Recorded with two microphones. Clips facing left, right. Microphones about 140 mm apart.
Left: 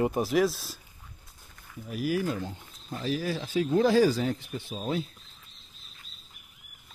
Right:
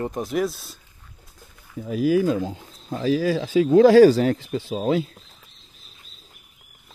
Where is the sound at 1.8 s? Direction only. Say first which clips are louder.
Right 9 dB; 90° right.